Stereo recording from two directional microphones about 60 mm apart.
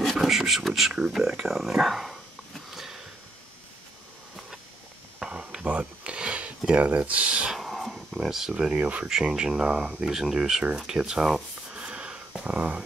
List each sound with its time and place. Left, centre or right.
0.0 s a sound: centre
1.2 s speech: centre
1.5 s dog: centre
5.2 s a sound: centre
6.7 s speech: right
7.5 s speech: centre
11.8 s wheeze: centre
12.4 s speech: right